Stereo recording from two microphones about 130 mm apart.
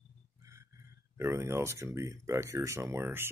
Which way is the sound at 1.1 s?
20° right (ahead or behind).